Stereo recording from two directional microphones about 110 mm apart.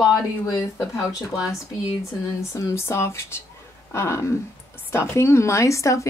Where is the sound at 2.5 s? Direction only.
25° left (ahead or behind).